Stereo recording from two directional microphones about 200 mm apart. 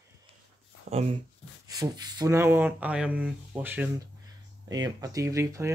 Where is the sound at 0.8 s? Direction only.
30° right (ahead or behind).